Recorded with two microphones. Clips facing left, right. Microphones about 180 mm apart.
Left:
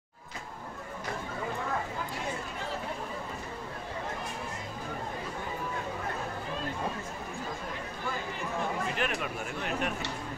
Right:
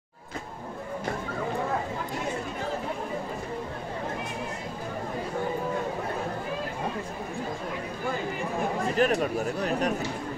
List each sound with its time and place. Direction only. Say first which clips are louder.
8.9 s speech: right 9 dB; 40° right (ahead or behind)